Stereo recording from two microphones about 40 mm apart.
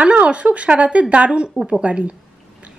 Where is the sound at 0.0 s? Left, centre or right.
Right.